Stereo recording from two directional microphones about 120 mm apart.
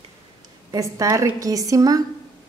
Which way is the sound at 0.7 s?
30° right (ahead or behind).